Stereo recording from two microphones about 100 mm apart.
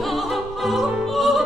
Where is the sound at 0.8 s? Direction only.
Centre (ahead or behind).